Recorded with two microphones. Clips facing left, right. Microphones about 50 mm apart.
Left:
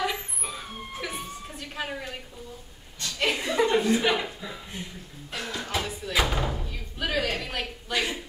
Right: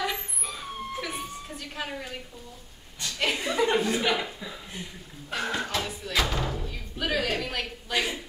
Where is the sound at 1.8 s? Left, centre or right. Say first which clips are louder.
Left 2 dB; centre.